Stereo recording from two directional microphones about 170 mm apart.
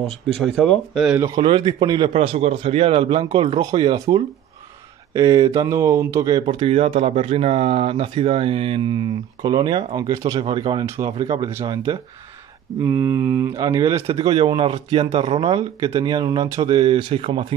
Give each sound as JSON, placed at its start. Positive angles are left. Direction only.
{"t": 0.6, "sound": "speech", "side_deg": 0}
{"t": 1.1, "sound": "speech", "side_deg": -15}
{"t": 1.4, "sound": "speech", "side_deg": -25}
{"t": 6.4, "sound": "speech", "side_deg": -35}